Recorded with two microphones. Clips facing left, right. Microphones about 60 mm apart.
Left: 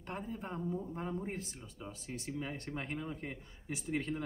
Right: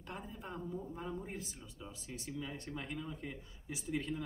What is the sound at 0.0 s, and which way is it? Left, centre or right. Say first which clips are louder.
Speech: left 5 dB; left.